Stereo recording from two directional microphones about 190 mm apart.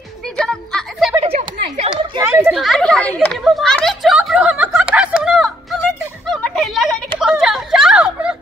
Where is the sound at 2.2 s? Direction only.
10° right (ahead or behind).